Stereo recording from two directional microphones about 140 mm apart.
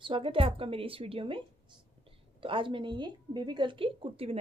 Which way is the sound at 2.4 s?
35° right (ahead or behind).